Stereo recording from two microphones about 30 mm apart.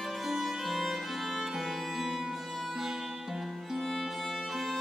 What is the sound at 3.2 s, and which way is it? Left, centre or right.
Music, centre.